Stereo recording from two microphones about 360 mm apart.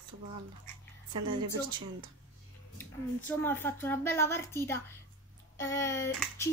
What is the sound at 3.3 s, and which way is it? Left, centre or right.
A child's voice, centre.